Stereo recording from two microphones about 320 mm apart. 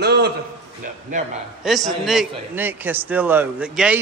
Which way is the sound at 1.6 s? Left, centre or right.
Centre.